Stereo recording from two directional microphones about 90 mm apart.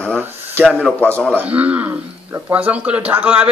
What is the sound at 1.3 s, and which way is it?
Speech, 15° right (ahead or behind).